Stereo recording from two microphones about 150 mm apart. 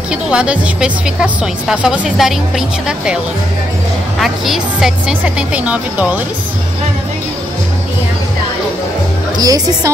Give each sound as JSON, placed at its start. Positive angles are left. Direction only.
{"t": 0.1, "sound": "a woman's voice", "side_deg": -5}
{"t": 4.2, "sound": "speech", "side_deg": 0}
{"t": 9.4, "sound": "speech", "side_deg": -25}